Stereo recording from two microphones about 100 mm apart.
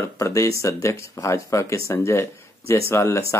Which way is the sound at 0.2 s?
30° left (ahead or behind).